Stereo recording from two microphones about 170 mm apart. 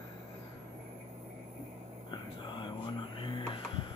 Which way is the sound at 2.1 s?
30° left (ahead or behind).